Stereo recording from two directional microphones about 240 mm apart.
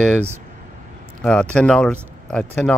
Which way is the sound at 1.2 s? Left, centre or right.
Centre.